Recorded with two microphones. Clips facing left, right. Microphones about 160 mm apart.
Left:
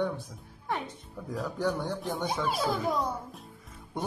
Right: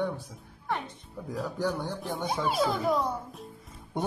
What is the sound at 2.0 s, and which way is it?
Speech, 5° right (ahead or behind).